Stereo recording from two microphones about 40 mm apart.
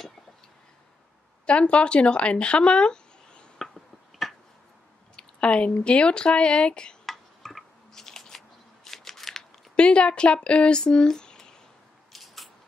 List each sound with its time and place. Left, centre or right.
1.4 s speech: left
3.5 s tick-tock: centre
5.1 s speech: left
7.1 s tick-tock: centre
7.9 s scissors: centre
8.4 s shuffling cards: centre
9.8 s speech: left
12.1 s scissors: centre